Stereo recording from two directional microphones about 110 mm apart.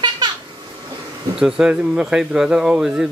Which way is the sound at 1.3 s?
5° right (ahead or behind).